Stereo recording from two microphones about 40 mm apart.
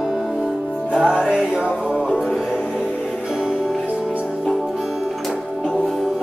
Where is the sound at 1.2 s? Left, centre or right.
Centre.